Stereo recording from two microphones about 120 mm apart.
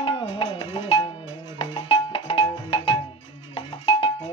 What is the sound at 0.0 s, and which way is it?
Music, 50° left (ahead or behind).